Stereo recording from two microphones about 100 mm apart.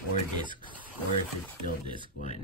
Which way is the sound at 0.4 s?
55° right (ahead or behind).